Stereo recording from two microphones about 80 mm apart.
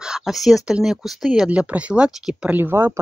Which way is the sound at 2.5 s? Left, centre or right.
Right.